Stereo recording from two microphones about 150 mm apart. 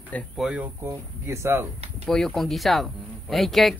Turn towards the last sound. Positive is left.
turn(degrees=0)  # may be behind; listen again after turning